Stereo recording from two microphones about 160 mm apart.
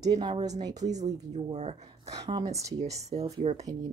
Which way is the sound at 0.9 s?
45° right (ahead or behind).